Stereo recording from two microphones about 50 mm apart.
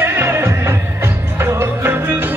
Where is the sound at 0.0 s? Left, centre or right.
Right.